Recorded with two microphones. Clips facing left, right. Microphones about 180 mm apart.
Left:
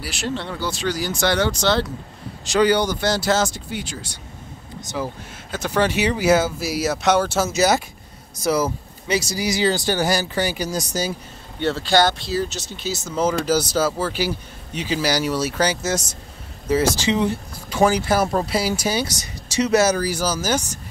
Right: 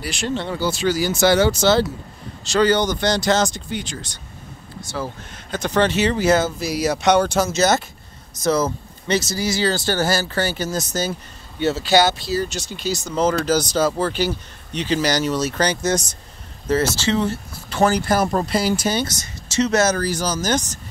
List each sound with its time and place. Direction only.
0.0 s speech: 5° left (ahead or behind)
2.4 s speech: 15° left (ahead or behind)
4.9 s speech: 20° left (ahead or behind)
5.5 s speech: 5° left (ahead or behind)
11.6 s speech: 5° right (ahead or behind)